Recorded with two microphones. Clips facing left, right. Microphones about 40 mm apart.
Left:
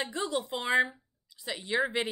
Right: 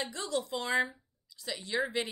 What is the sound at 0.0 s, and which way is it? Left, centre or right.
Speech, left.